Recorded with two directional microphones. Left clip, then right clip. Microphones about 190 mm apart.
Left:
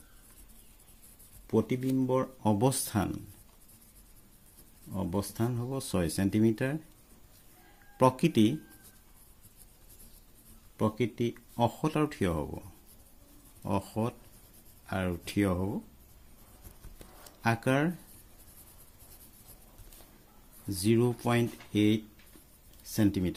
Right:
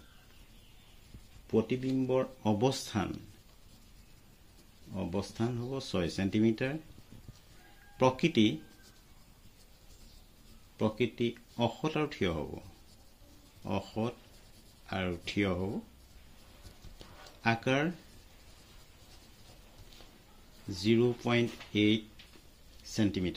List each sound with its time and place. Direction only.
1.5 s speech: 60° left (ahead or behind)
4.9 s speech: 60° left (ahead or behind)
8.0 s speech: 60° left (ahead or behind)
10.8 s speech: 55° left (ahead or behind)
13.7 s speech: 55° left (ahead or behind)
17.4 s speech: 60° left (ahead or behind)
20.7 s speech: 60° left (ahead or behind)